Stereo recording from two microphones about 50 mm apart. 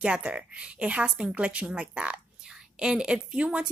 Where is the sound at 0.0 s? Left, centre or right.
Right.